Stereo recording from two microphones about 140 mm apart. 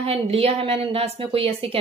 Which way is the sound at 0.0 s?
45° right (ahead or behind).